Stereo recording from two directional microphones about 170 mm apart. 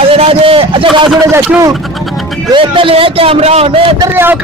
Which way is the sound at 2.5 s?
30° right (ahead or behind).